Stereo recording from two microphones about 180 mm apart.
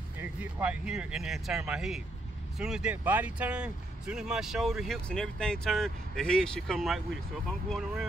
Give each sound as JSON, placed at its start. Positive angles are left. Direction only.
{"t": 0.2, "sound": "speech", "side_deg": -10}